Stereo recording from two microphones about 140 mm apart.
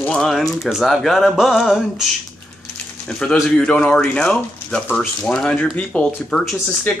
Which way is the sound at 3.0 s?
5° left (ahead or behind).